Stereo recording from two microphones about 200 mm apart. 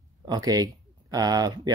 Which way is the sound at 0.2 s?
20° right (ahead or behind).